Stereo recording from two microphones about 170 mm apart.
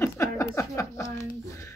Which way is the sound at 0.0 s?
20° left (ahead or behind).